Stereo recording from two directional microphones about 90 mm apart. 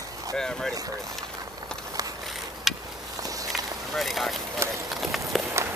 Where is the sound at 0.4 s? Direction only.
5° left (ahead or behind).